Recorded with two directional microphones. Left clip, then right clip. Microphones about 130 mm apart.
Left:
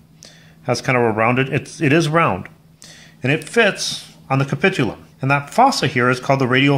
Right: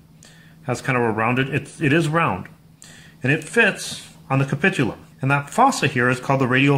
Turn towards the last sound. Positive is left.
turn(degrees=20)  # may be behind; listen again after turning